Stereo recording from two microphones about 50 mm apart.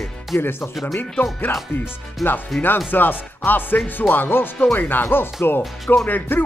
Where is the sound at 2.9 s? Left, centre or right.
Left.